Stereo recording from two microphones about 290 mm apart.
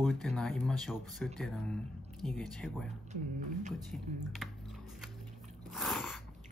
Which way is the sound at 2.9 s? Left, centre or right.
Right.